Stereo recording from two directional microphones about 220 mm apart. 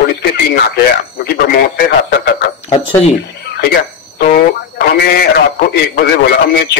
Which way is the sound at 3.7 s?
45° left (ahead or behind).